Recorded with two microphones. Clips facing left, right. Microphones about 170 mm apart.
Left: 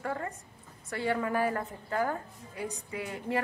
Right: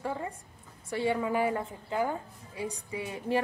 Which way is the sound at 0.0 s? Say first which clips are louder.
Even; 10° right (ahead or behind).